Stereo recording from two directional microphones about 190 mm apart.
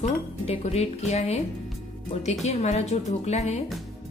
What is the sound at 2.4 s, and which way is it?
Speech, 35° left (ahead or behind).